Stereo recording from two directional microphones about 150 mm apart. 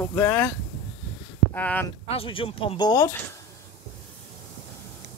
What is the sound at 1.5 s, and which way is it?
Speech, 10° left (ahead or behind).